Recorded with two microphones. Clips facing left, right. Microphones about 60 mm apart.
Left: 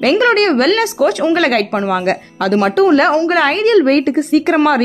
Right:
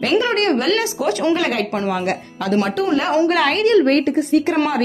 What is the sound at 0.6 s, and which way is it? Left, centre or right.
Speech, left.